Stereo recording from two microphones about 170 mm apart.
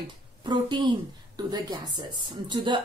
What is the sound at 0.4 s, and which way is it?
A woman's voice, 25° right (ahead or behind).